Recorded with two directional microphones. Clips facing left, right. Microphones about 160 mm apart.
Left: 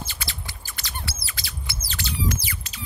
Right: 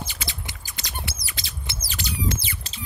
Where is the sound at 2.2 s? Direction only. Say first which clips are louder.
Even; 25° right (ahead or behind).